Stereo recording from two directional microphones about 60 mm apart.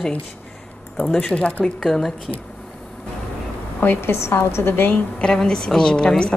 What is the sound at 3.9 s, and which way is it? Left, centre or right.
A woman's voice, left.